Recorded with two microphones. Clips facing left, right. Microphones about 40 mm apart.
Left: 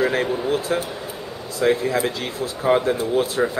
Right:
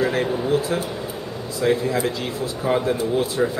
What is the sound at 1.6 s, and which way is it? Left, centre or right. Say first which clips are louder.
A man's voice: left 1 dB; left.